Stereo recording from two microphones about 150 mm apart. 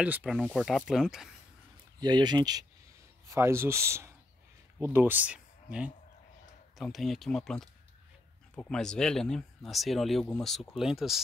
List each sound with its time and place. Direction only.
0.2 s speech: 5° left (ahead or behind)
2.0 s speech: 30° right (ahead or behind)
3.3 s speech: 15° right (ahead or behind)